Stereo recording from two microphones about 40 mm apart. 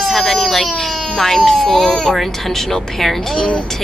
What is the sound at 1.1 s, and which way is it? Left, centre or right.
A woman's voice, centre.